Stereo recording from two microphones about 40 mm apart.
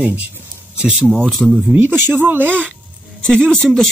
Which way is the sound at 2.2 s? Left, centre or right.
Right.